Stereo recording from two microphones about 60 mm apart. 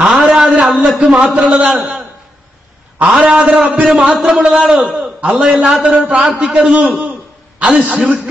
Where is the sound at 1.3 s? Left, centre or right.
Centre.